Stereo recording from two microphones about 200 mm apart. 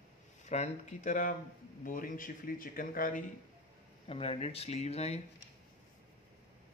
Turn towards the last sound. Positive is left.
turn(degrees=30)  # may be behind; listen again after turning